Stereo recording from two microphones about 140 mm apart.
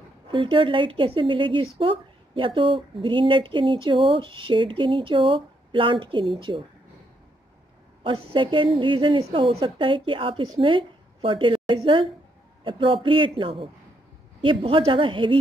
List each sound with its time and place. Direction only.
0.3 s speech: 35° right (ahead or behind)
8.0 s a woman's voice: 40° right (ahead or behind)